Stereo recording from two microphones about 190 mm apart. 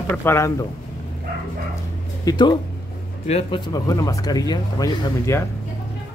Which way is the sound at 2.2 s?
20° left (ahead or behind).